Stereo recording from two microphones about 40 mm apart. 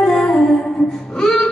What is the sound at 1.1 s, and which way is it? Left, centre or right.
Music, centre.